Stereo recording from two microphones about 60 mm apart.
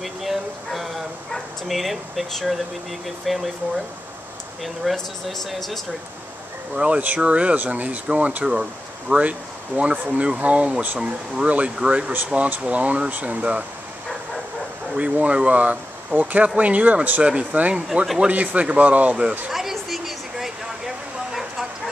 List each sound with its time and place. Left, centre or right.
0.0 s a sound: centre
1.3 s speech: centre
4.9 s speech: centre
6.7 s a man's voice: centre
9.8 s speech: centre
15.0 s speech: centre
18.0 s a man's voice: centre
18.3 s speech: right
19.5 s a sound: centre